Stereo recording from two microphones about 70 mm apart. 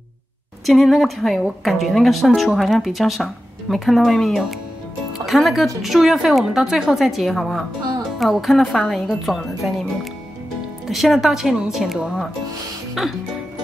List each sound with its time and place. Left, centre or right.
0.7 s a woman's voice: centre
5.8 s a woman's voice: centre
10.9 s a woman's voice: centre